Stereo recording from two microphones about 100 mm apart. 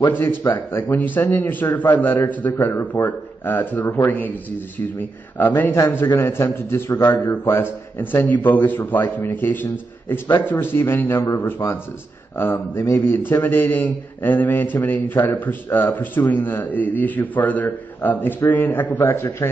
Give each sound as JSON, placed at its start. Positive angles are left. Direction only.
{"t": 0.1, "sound": "speech", "side_deg": 20}
{"t": 5.9, "sound": "speech", "side_deg": 20}